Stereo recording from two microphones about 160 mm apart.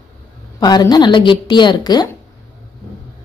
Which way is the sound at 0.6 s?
25° left (ahead or behind).